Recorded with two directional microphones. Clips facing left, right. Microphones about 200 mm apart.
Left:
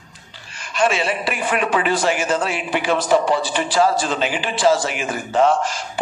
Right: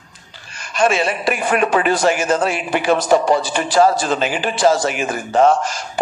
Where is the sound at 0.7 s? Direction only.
45° right (ahead or behind).